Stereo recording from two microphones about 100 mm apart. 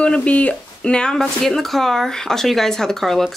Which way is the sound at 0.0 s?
10° left (ahead or behind).